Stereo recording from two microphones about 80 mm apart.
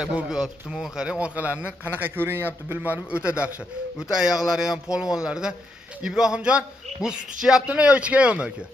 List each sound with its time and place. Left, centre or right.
0.0 s a man's voice: centre